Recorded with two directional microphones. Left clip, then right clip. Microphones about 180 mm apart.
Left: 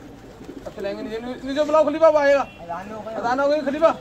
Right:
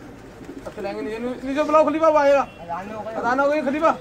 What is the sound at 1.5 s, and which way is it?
A man's voice, 30° right (ahead or behind).